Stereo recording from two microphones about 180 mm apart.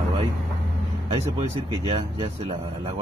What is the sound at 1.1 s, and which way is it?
Speech, 35° right (ahead or behind).